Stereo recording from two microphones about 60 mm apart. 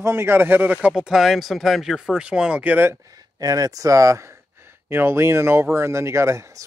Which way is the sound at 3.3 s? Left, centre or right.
Right.